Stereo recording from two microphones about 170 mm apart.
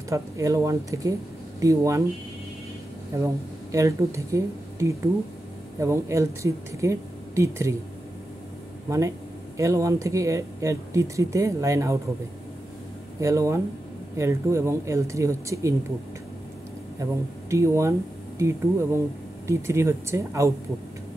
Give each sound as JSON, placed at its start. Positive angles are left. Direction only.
{"t": 0.1, "sound": "speech", "side_deg": -20}
{"t": 3.1, "sound": "speech", "side_deg": -15}
{"t": 8.8, "sound": "speech", "side_deg": -15}
{"t": 13.2, "sound": "speech", "side_deg": -20}
{"t": 17.0, "sound": "speech", "side_deg": -15}